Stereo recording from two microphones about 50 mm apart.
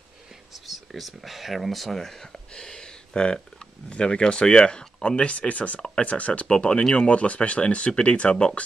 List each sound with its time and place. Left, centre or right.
0.7 s speech: centre; by 8.5 s left